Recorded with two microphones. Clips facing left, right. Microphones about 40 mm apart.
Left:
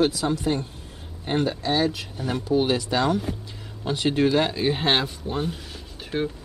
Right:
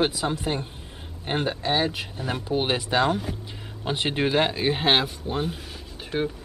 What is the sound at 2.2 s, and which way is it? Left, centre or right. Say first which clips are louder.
Speech: left 3 dB; centre.